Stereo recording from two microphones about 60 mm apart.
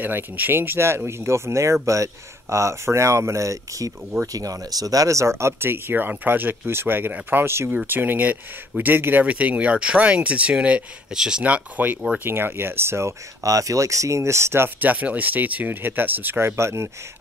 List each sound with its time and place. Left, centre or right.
0.0 s speech: right
4.3 s speech: right; by 11.4 s centre
11.4 s speech: right
12.3 s speech: right
13.4 s speech: right
14.8 s speech: right
16.3 s speech: right